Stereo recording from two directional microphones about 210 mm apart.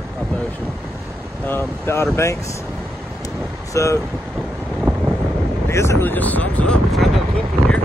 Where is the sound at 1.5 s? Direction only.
10° left (ahead or behind).